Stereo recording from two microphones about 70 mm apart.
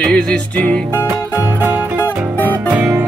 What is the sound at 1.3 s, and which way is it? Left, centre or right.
Music, right.